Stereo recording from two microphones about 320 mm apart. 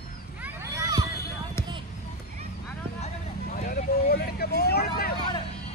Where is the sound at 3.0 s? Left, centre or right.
Left.